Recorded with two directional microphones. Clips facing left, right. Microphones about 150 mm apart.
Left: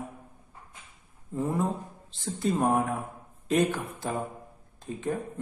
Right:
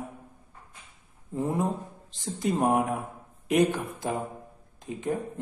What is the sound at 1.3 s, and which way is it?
A man's voice, 20° right (ahead or behind).